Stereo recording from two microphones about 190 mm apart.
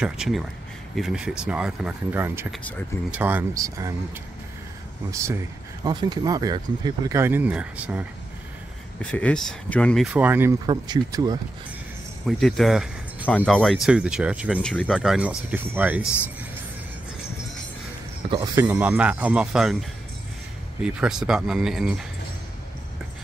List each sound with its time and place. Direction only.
0.0 s speech: 5° right (ahead or behind)
5.1 s speech: 15° right (ahead or behind)
9.0 s speech: 5° left (ahead or behind)
10.1 s speech: 10° right (ahead or behind)
10.7 s speech: 20° right (ahead or behind)
12.3 s speech: centre (ahead or behind)
18.3 s speech: 20° right (ahead or behind)
18.7 s speech: 10° right (ahead or behind)
20.8 s speech: 5° right (ahead or behind)